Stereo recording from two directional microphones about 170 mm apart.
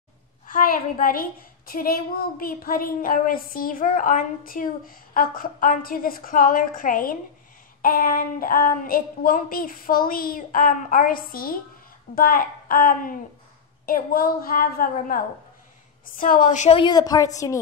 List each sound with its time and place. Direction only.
0.5 s a woman's voice: 50° left (ahead or behind)
16.8 s a woman's voice: 25° left (ahead or behind)